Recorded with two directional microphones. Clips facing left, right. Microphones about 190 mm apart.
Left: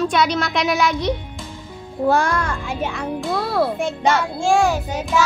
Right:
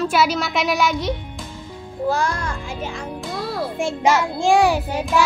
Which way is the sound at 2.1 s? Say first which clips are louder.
Left 4 dB; 55° left (ahead or behind).